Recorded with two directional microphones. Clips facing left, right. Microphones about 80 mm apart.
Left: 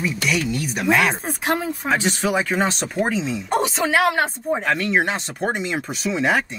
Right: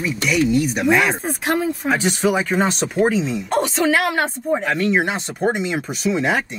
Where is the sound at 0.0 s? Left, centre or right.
Centre.